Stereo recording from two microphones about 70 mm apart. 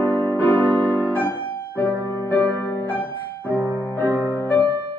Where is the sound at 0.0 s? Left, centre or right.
Left.